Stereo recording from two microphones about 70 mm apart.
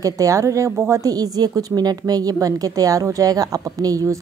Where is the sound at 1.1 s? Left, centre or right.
Right.